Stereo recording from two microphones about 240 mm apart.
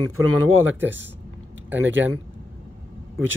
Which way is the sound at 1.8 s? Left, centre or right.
Right.